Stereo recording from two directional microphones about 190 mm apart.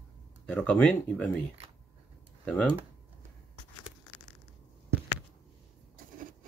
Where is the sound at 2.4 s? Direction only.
5° left (ahead or behind).